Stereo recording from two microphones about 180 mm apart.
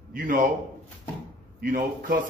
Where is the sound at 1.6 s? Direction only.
50° right (ahead or behind).